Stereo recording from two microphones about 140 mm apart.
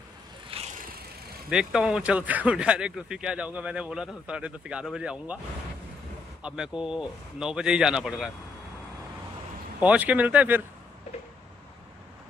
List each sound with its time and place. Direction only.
0.5 s vehicle: 45° right (ahead or behind)
1.5 s speech: 5° right (ahead or behind)
6.4 s speech: 5° right (ahead or behind)
9.8 s speech: 10° right (ahead or behind)